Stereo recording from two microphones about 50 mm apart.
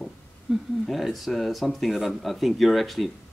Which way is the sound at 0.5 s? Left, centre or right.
Centre.